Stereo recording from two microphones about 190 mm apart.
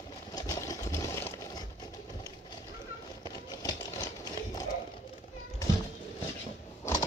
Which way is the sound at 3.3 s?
20° left (ahead or behind).